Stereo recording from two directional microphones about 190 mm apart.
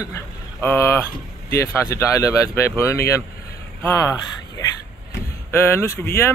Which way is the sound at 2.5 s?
15° left (ahead or behind).